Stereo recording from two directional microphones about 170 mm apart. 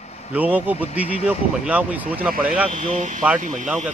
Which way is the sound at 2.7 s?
45° right (ahead or behind).